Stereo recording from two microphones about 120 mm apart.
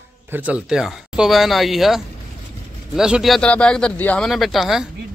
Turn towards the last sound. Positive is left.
turn(degrees=0)  # may be behind; listen again after turning